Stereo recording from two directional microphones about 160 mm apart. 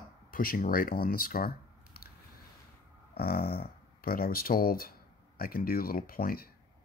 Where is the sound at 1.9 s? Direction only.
75° left (ahead or behind).